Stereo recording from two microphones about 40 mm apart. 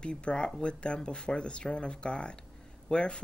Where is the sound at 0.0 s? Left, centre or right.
Left.